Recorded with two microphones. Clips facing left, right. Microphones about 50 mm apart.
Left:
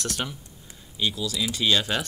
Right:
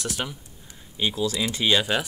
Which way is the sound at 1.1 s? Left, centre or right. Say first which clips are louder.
Right 3 dB; right.